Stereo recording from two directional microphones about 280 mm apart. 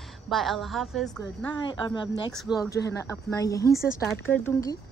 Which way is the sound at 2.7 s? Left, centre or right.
Centre.